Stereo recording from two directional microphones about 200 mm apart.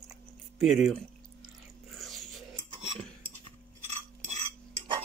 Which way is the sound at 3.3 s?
35° right (ahead or behind).